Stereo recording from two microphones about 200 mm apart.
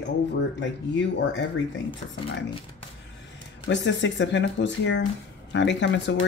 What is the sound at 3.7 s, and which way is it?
Speech, 65° left (ahead or behind).